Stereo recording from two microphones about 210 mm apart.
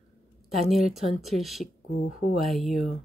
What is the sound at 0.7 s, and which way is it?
Speech, centre (ahead or behind).